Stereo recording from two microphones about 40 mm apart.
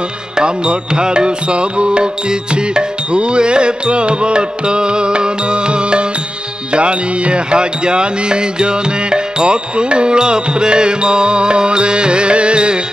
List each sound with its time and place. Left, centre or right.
0.4 s music: right